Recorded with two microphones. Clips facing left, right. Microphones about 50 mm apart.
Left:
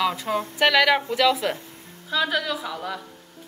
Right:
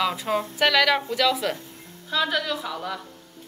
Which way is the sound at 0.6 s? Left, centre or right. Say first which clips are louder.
Left 2 dB; centre.